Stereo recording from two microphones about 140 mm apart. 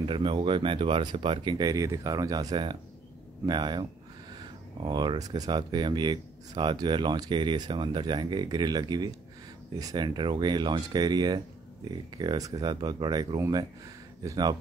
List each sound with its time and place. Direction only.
0.0 s speech: 35° right (ahead or behind)